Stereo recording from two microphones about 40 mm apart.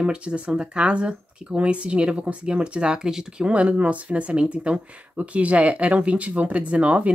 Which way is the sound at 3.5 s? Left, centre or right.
Right.